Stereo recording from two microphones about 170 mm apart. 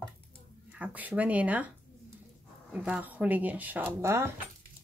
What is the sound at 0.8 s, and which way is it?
Speech, 10° right (ahead or behind).